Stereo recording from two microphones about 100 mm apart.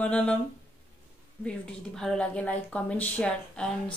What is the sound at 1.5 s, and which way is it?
Speech, 10° left (ahead or behind).